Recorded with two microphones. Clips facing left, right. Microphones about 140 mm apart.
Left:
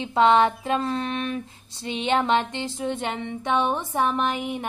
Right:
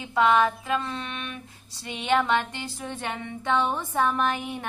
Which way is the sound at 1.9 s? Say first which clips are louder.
Left 2 dB; 25° left (ahead or behind).